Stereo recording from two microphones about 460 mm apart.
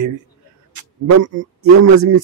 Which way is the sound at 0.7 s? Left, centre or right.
Right.